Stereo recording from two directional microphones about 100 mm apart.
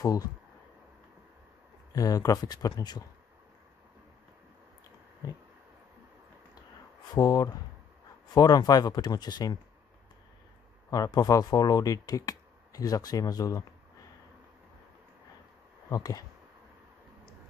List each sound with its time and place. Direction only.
0.0 s speech: 40° left (ahead or behind)
2.0 s speech: 35° left (ahead or behind)
7.2 s speech: 40° left (ahead or behind)
10.9 s speech: 40° left (ahead or behind)
15.9 s speech: 40° left (ahead or behind)